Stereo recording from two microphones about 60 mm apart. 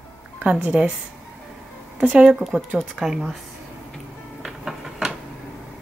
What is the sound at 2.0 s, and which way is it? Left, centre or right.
Speech, centre.